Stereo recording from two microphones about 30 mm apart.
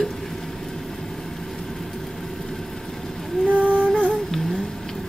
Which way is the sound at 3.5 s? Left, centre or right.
Right.